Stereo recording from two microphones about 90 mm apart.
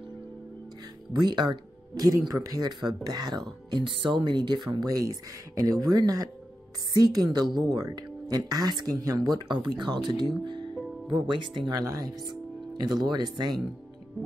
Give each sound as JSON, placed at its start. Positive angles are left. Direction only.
{"t": 1.1, "sound": "a woman's voice", "side_deg": -55}
{"t": 10.4, "sound": "music", "side_deg": -60}
{"t": 11.2, "sound": "speech", "side_deg": -60}
{"t": 11.8, "sound": "speech", "side_deg": -45}